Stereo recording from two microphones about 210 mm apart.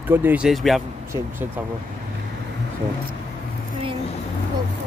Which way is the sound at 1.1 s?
10° right (ahead or behind).